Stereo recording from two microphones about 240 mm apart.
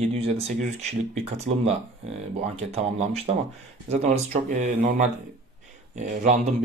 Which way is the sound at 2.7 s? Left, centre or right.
Right.